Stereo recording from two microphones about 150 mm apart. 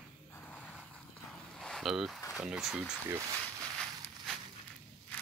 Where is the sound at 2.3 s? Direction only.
5° right (ahead or behind).